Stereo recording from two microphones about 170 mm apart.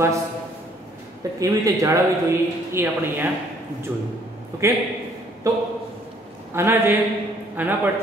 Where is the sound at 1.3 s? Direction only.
20° right (ahead or behind).